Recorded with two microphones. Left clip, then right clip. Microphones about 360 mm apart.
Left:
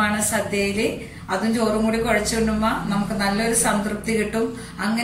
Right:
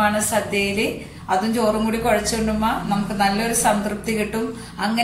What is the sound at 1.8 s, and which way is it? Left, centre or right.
Speech, centre.